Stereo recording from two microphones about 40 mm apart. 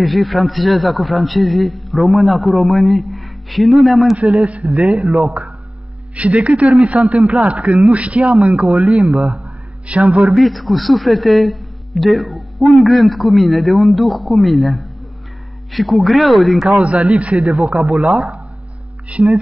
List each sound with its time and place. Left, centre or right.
0.0 s a man's voice: centre
4.3 s speech: right
6.1 s a man's voice: right
10.3 s a man's voice: centre
16.6 s a man's voice: right
17.4 s a man's voice: centre
19.0 s a man's voice: right